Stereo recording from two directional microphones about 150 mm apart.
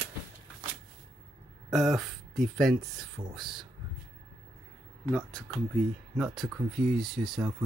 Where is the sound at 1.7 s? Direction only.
Centre (ahead or behind).